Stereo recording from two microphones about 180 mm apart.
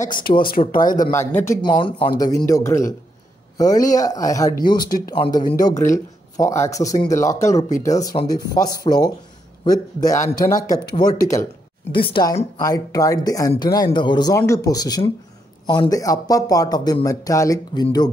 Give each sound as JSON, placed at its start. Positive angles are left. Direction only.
{"t": 0.7, "sound": "speech", "side_deg": 50}
{"t": 1.1, "sound": "speech", "side_deg": 15}
{"t": 1.8, "sound": "speech", "side_deg": 30}
{"t": 4.8, "sound": "speech", "side_deg": 55}
{"t": 5.1, "sound": "speech", "side_deg": 25}